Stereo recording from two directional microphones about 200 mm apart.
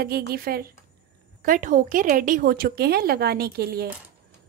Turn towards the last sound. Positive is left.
turn(degrees=-50)  # may be behind; listen again after turning